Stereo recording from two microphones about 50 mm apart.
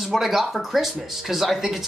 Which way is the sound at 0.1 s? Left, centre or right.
Centre.